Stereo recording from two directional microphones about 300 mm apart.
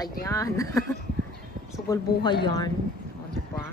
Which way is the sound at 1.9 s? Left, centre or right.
Centre.